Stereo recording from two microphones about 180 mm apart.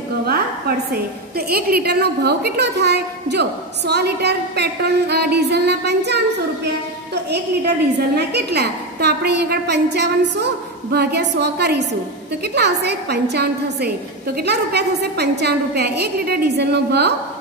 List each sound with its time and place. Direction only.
0.2 s a sound: 60° right (ahead or behind)
1.3 s a woman's voice: 60° right (ahead or behind)
7.2 s a woman's voice: 65° right (ahead or behind)